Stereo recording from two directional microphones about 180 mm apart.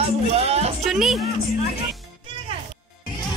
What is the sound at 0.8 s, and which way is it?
Music, centre (ahead or behind).